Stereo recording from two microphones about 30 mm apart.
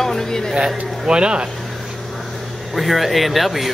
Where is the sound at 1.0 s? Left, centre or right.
Right.